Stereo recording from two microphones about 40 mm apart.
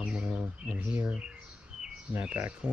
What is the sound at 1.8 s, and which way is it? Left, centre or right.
Chirp, right.